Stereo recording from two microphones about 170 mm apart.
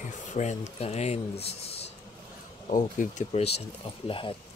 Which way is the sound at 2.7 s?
45° left (ahead or behind).